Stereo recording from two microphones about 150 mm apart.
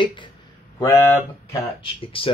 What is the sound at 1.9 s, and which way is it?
Speech, 35° left (ahead or behind).